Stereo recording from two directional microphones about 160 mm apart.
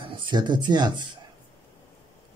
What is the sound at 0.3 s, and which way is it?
Speech, 25° right (ahead or behind).